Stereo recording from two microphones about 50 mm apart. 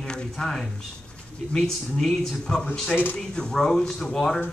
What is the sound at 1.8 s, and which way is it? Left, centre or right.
A man's voice, centre.